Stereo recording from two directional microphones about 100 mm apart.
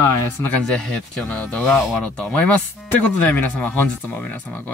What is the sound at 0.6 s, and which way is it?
Speech, 10° left (ahead or behind).